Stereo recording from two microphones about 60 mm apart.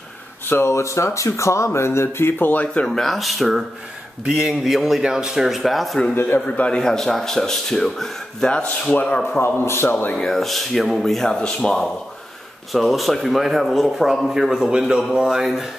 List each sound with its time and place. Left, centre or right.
0.5 s speech: left
2.9 s speech: centre
6.1 s a man's voice: left
6.4 s a man's voice: left
6.8 s speech: centre
9.0 s a man's voice: left
9.4 s speech: left
10.1 s speech: centre
12.7 s speech: centre